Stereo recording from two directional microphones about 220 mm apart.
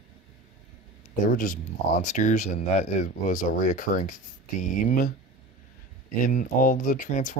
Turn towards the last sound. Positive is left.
turn(degrees=35)  # may be behind; listen again after turning